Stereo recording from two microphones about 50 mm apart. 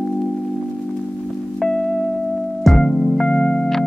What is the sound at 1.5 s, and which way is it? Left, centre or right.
Music, centre.